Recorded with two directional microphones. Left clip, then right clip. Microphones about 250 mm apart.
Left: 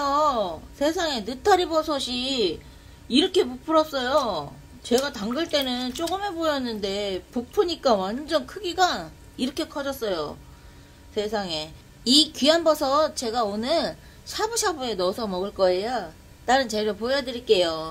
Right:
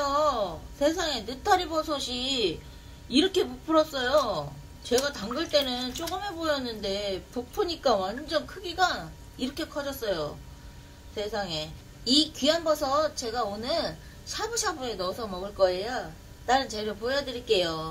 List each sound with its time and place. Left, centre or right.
0.0 s a woman's voice: left